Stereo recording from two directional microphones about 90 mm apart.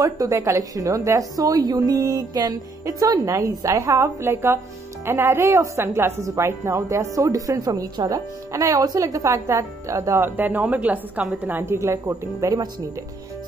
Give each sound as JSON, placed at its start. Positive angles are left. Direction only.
{"t": 0.0, "sound": "a woman's voice", "side_deg": -35}
{"t": 10.3, "sound": "a woman's voice", "side_deg": -20}